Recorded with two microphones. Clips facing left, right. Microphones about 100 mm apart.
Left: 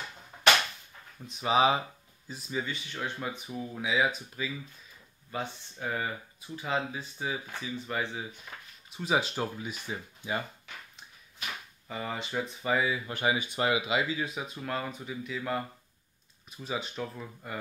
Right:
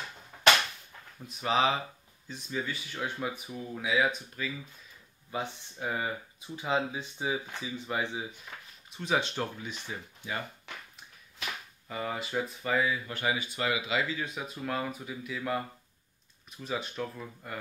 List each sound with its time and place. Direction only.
1.4 s speech: 10° left (ahead or behind)
5.3 s speech: 10° right (ahead or behind)
8.5 s speech: 5° left (ahead or behind)
11.9 s speech: centre (ahead or behind)
12.6 s speech: 10° left (ahead or behind)